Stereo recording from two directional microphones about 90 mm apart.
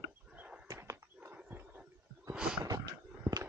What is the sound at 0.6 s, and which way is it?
Dog, 40° right (ahead or behind).